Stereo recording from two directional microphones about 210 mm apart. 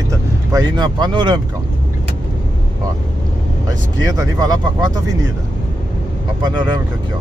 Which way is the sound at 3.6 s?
15° right (ahead or behind).